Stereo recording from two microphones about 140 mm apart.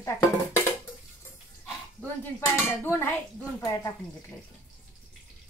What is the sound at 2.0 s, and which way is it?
Speech, 15° left (ahead or behind).